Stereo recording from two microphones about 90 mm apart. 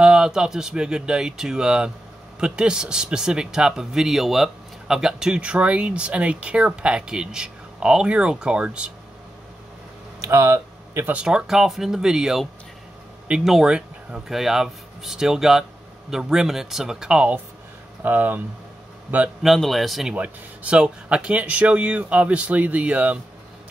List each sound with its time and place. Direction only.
0.0 s speech: 10° right (ahead or behind)
10.2 s speech: 30° right (ahead or behind)
11.1 s a man's voice: 10° right (ahead or behind)
19.4 s speech: centre (ahead or behind)
20.2 s speech: 15° right (ahead or behind)